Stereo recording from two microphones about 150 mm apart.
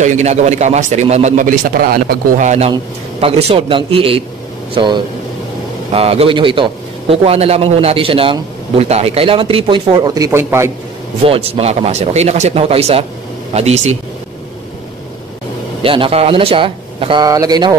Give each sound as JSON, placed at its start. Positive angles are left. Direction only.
{"t": 0.0, "sound": "a man's voice", "side_deg": -50}
{"t": 2.4, "sound": "a man's voice", "side_deg": -50}
{"t": 5.9, "sound": "a man's voice", "side_deg": -40}
{"t": 11.2, "sound": "a man's voice", "side_deg": -40}
{"t": 15.8, "sound": "a man's voice", "side_deg": -35}